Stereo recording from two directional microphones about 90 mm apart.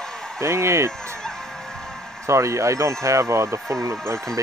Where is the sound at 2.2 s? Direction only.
35° right (ahead or behind).